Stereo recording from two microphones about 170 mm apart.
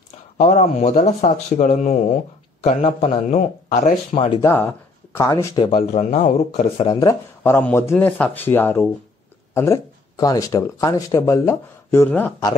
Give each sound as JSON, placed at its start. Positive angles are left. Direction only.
{"t": 0.4, "sound": "speech", "side_deg": 45}
{"t": 4.3, "sound": "speech", "side_deg": 20}
{"t": 5.8, "sound": "speech", "side_deg": 50}
{"t": 6.9, "sound": "speech", "side_deg": 20}